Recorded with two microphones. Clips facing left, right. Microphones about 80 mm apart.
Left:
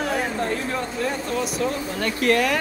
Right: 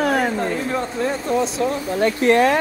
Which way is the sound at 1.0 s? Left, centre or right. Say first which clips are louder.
Right 6 dB; right.